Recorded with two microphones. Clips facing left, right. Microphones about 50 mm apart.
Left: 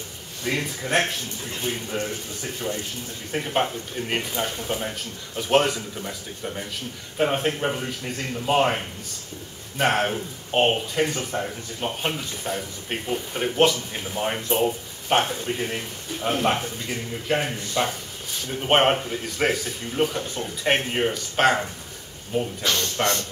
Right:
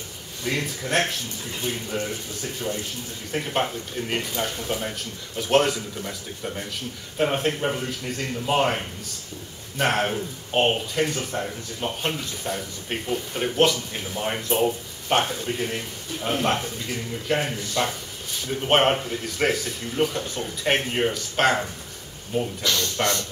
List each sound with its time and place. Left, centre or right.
0.4 s speech: centre
22.6 s speech: left